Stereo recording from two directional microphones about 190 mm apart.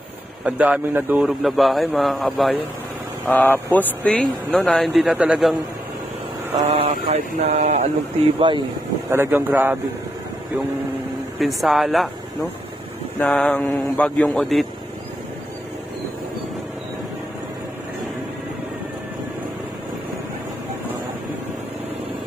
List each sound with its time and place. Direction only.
0.5 s a man's voice: 5° right (ahead or behind)
6.8 s speech: 35° right (ahead or behind)
8.4 s speech: 25° right (ahead or behind)
9.1 s speech: 10° right (ahead or behind)
11.3 s a man's voice: centre (ahead or behind)
13.2 s a man's voice: 5° left (ahead or behind)